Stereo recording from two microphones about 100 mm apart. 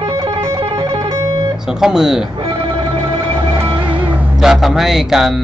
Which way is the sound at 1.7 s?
5° right (ahead or behind).